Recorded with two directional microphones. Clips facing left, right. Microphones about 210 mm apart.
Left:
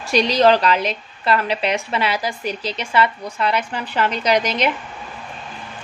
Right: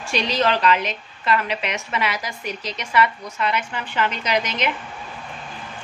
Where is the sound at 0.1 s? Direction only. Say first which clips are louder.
Left 7 dB; 35° left (ahead or behind).